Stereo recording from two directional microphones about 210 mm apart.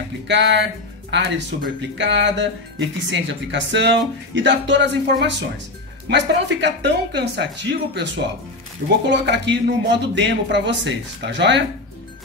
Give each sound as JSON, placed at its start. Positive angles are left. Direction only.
{"t": 0.3, "sound": "speech", "side_deg": -60}